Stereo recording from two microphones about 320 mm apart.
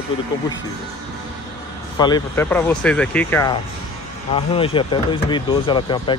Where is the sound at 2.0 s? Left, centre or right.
Centre.